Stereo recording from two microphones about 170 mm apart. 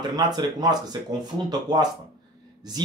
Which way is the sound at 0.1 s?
25° right (ahead or behind).